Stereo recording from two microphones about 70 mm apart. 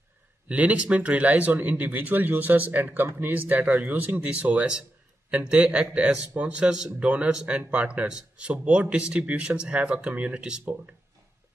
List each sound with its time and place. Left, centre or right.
0.5 s a man's voice: centre